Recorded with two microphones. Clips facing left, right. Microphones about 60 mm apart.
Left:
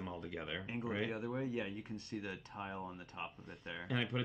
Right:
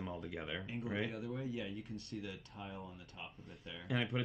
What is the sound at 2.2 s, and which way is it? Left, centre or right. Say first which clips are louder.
Speech: left 3 dB; left.